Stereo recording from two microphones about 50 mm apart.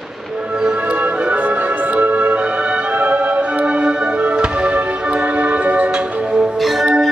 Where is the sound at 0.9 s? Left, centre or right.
Right.